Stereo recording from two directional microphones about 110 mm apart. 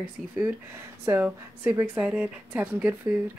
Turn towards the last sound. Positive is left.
turn(degrees=-15)  # may be behind; listen again after turning